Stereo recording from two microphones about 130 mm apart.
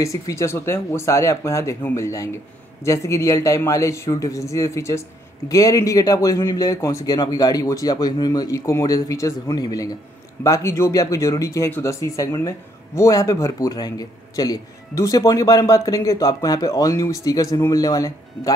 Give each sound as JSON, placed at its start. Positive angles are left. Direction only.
{"t": 0.0, "sound": "speech", "side_deg": 25}